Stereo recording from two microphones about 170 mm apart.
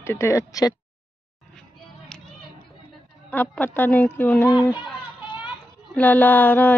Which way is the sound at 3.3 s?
10° left (ahead or behind).